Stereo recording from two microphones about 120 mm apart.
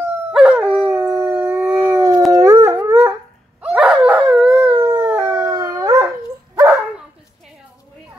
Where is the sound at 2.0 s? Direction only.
30° right (ahead or behind).